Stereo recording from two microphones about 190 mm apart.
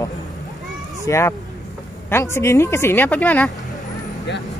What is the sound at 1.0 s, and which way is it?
A woman's voice, 15° left (ahead or behind).